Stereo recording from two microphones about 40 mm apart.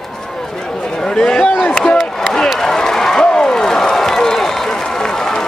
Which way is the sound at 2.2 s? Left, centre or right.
Centre.